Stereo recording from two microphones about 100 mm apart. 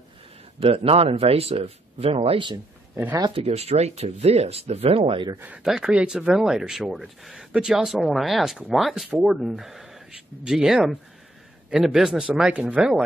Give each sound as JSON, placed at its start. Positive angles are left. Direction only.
{"t": 0.6, "sound": "speech", "side_deg": -65}
{"t": 3.3, "sound": "speech", "side_deg": -90}
{"t": 5.6, "sound": "speech", "side_deg": -5}